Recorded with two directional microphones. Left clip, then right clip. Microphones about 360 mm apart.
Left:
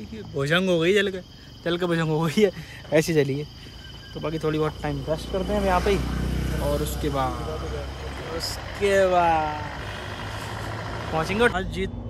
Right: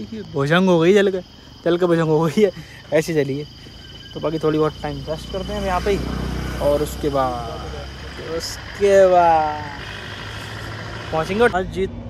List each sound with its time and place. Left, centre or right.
0.4 s speech: centre
6.4 s vehicle: centre
6.7 s speech: centre
8.2 s vehicle: left
8.8 s speech: centre
9.6 s vehicle: left
11.1 s speech: centre